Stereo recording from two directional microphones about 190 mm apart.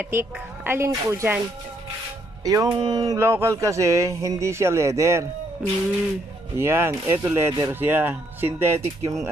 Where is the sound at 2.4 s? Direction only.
20° right (ahead or behind).